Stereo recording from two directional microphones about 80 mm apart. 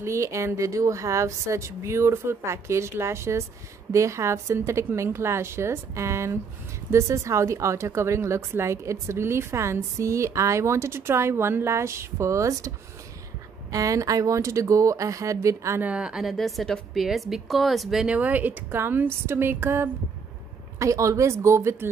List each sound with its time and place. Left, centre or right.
0.0 s a woman's voice: right
15.8 s a woman's voice: centre
18.0 s a woman's voice: centre
20.8 s a woman's voice: right